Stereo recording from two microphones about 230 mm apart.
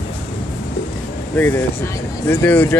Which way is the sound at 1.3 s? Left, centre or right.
Centre.